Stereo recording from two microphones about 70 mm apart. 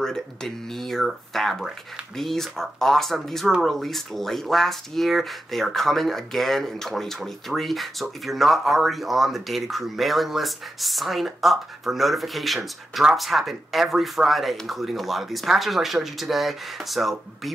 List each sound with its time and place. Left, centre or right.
0.0 s speech: centre